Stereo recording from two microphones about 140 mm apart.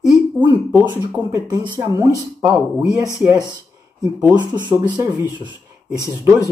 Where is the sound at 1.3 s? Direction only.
30° right (ahead or behind).